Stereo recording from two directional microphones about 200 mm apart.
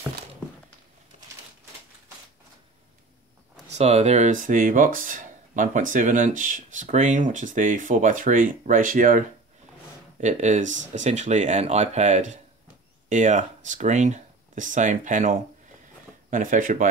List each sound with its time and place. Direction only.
3.7 s speech: 30° right (ahead or behind)
10.2 s speech: 35° right (ahead or behind)